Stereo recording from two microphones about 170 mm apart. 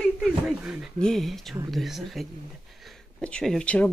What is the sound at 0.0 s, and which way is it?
Speech, centre (ahead or behind).